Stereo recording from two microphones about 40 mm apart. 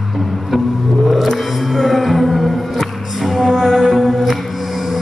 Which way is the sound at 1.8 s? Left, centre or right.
Centre.